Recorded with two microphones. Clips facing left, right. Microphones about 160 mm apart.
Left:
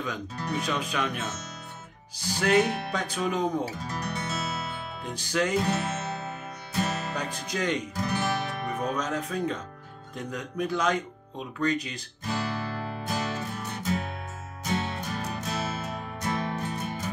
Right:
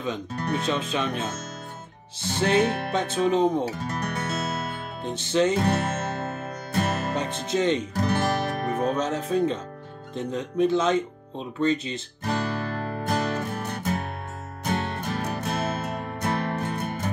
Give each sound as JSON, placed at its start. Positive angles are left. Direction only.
{"t": 0.6, "sound": "speech", "side_deg": -25}
{"t": 3.8, "sound": "music", "side_deg": -60}
{"t": 5.0, "sound": "speech", "side_deg": -25}
{"t": 5.6, "sound": "music", "side_deg": -55}
{"t": 7.2, "sound": "music", "side_deg": -25}
{"t": 7.9, "sound": "music", "side_deg": -55}
{"t": 8.8, "sound": "speech", "side_deg": -30}
{"t": 12.3, "sound": "music", "side_deg": -55}